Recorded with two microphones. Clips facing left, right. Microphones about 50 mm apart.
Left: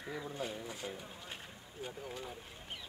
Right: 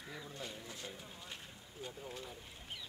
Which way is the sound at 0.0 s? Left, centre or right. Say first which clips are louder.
Left 6 dB; centre.